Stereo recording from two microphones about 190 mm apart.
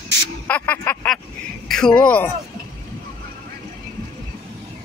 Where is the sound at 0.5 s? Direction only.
10° left (ahead or behind).